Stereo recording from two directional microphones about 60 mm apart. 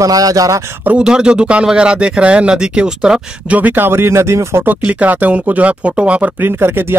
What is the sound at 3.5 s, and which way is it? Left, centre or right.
Speech, right.